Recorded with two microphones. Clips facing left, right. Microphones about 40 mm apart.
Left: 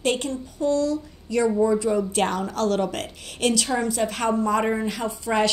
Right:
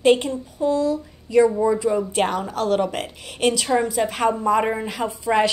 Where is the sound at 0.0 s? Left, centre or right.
Centre.